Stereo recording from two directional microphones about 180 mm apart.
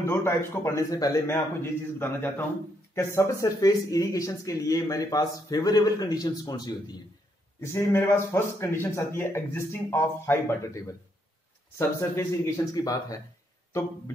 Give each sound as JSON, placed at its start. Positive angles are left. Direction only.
{"t": 0.0, "sound": "speech", "side_deg": 15}